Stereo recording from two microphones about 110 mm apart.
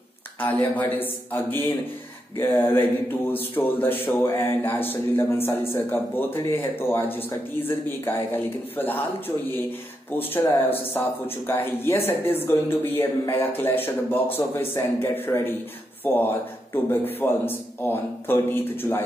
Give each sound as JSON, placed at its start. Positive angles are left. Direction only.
{"t": 0.5, "sound": "a man's voice", "side_deg": 15}
{"t": 10.3, "sound": "speech", "side_deg": 20}